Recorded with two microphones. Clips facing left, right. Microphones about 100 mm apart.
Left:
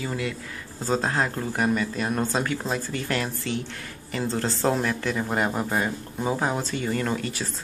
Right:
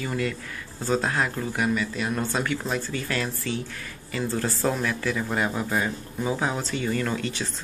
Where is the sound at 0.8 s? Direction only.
30° left (ahead or behind).